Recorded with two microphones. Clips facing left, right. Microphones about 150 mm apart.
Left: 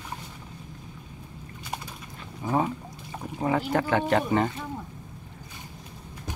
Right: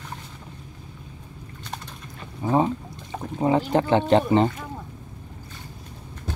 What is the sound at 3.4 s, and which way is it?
Speech, 25° right (ahead or behind).